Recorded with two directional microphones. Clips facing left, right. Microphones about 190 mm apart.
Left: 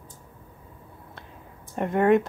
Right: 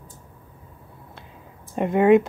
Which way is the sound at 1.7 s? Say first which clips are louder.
Right 4 dB; 15° right (ahead or behind).